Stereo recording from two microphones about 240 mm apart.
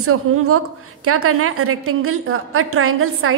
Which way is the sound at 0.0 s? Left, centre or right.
Right.